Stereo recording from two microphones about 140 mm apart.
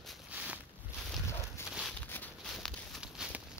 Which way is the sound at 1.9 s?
15° left (ahead or behind).